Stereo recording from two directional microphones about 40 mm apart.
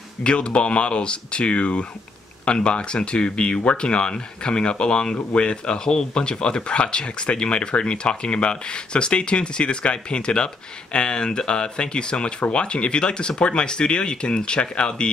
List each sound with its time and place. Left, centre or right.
0.2 s speech: left